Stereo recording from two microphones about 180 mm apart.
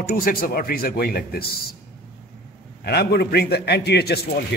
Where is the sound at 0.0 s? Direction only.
55° left (ahead or behind).